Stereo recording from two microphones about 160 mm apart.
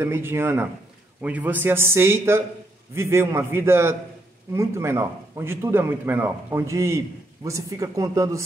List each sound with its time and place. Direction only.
0.0 s a man's voice: 15° right (ahead or behind)